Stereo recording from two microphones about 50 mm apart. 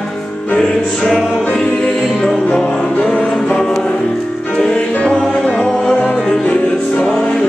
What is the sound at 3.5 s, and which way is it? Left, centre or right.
Music, centre.